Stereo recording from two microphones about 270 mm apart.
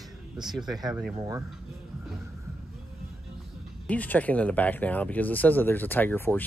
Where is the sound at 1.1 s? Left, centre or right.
Centre.